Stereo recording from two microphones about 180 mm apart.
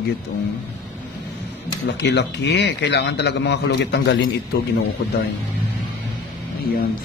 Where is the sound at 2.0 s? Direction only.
75° left (ahead or behind).